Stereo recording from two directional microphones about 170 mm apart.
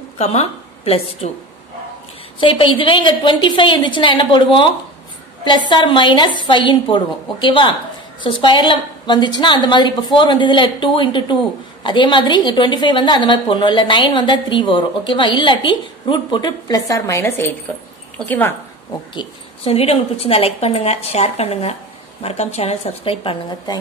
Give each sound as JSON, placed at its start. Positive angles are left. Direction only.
{"t": 0.2, "sound": "a woman's voice", "side_deg": 40}
{"t": 2.4, "sound": "a woman's voice", "side_deg": 30}
{"t": 5.7, "sound": "a woman's voice", "side_deg": 30}
{"t": 19.1, "sound": "a woman's voice", "side_deg": 35}